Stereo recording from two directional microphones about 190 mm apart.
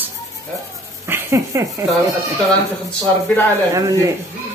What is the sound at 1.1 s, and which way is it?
Speech, 15° right (ahead or behind).